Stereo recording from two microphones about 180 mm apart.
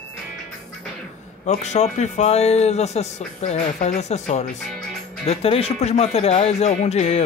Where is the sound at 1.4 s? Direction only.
40° left (ahead or behind).